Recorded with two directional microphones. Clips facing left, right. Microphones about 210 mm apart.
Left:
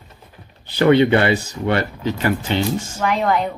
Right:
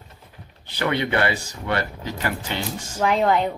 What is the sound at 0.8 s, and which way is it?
Speech, 25° left (ahead or behind).